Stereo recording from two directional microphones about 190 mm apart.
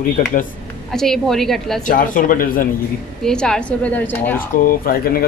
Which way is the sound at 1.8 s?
45° left (ahead or behind).